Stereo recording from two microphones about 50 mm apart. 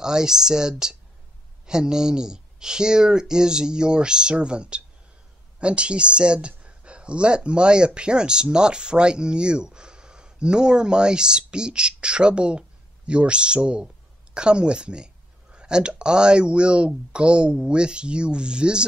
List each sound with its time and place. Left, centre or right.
0.0 s speech: centre